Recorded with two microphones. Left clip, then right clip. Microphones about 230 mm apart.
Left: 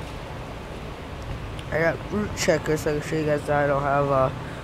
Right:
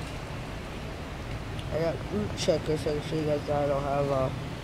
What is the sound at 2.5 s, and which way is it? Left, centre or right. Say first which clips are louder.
Speech: left 5 dB; left.